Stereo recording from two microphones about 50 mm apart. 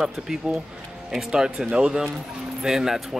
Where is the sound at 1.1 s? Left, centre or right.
Centre.